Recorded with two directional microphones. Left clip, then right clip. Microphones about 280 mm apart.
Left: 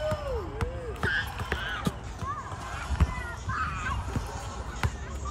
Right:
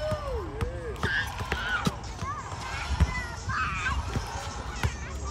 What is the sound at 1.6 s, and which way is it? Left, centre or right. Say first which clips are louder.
Clip-clop: right 4 dB; right.